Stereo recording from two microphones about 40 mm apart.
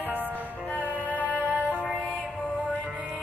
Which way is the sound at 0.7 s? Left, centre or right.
Left.